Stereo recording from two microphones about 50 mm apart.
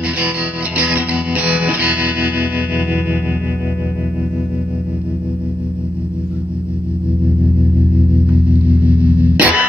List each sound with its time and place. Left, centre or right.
0.7 s music: right
7.9 s music: right